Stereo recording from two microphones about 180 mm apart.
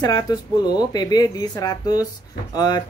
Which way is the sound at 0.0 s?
20° left (ahead or behind).